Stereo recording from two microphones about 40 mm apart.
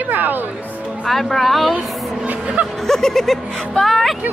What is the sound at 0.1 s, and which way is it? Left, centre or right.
Music, right.